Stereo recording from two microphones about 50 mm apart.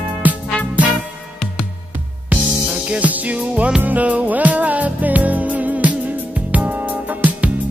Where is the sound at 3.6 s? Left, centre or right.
Centre.